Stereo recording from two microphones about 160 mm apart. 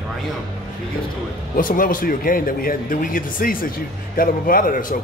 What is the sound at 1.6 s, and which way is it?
Speech, 60° left (ahead or behind).